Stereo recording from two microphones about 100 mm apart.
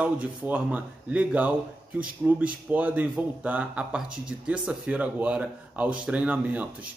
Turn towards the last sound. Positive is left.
turn(degrees=-15)  # may be behind; listen again after turning